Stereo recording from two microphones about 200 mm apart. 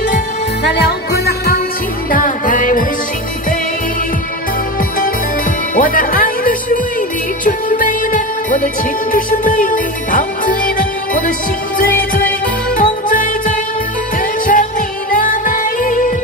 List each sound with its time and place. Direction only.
0.7 s music: 55° left (ahead or behind)
5.8 s music: 45° left (ahead or behind)
12.7 s music: 40° left (ahead or behind)